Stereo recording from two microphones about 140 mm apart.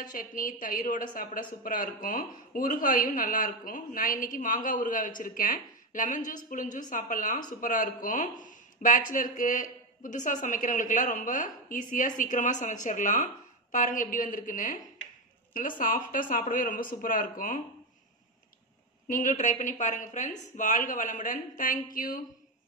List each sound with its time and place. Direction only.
0.1 s a man's voice: 80° left
15.8 s a man's voice: 75° left (ahead or behind)
19.0 s a man's voice: 65° left (ahead or behind)
21.9 s speech: 90° left